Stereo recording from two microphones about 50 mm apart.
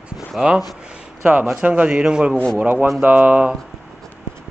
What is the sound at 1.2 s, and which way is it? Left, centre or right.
Speech, right.